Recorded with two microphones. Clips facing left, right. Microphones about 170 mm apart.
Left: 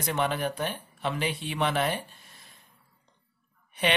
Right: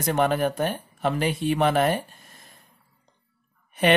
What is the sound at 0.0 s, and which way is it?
Speech, 45° right (ahead or behind).